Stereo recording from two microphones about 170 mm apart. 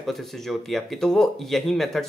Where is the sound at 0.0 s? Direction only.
Centre (ahead or behind).